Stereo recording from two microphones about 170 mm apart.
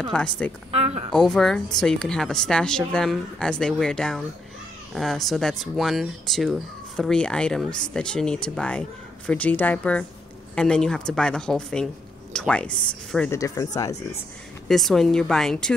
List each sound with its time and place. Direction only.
0.0 s speech: 5° left (ahead or behind)
0.7 s speech: 40° right (ahead or behind)
1.1 s speech: 5° left (ahead or behind)
13.3 s speech: 20° left (ahead or behind)
14.7 s speech: centre (ahead or behind)